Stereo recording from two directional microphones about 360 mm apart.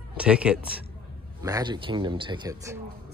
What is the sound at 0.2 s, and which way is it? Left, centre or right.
A man's voice, centre.